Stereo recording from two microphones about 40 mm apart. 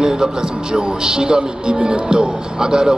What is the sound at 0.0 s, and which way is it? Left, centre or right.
Speech, centre.